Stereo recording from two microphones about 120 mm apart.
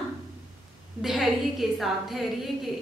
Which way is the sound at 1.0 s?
Centre (ahead or behind).